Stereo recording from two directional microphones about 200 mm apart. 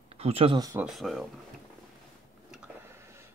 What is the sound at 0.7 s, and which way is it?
Speech, 5° right (ahead or behind).